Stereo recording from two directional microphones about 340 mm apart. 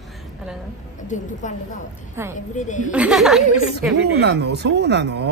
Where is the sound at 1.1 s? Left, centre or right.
Left.